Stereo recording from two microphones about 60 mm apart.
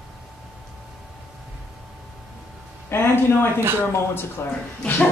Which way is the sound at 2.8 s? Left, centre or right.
Left.